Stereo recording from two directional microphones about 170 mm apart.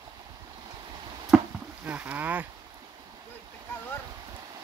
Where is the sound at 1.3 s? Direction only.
Centre (ahead or behind).